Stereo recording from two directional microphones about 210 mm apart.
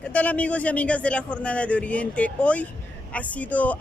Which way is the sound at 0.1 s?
5° left (ahead or behind).